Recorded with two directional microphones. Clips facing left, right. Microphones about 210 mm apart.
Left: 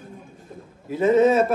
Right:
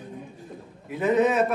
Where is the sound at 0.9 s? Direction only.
30° left (ahead or behind).